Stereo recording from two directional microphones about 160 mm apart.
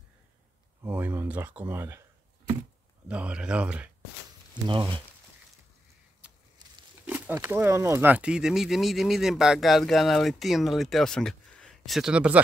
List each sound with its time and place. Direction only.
0.8 s speech: 10° right (ahead or behind)
3.1 s speech: 5° right (ahead or behind)
4.6 s speech: 30° right (ahead or behind)
7.1 s speech: 10° right (ahead or behind)